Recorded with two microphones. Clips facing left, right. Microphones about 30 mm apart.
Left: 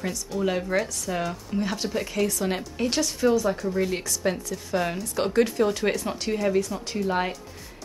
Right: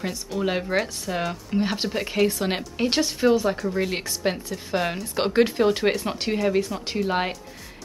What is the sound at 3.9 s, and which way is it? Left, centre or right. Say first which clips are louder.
A woman's voice: right 1 dB; right.